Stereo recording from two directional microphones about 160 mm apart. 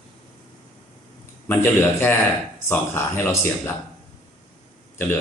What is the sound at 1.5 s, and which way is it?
Speech, 10° left (ahead or behind).